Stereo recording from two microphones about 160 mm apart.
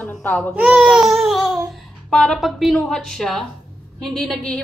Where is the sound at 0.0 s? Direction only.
10° left (ahead or behind).